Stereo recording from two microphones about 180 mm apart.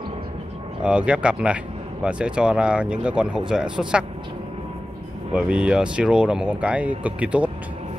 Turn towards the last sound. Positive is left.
turn(degrees=-10)  # may be behind; listen again after turning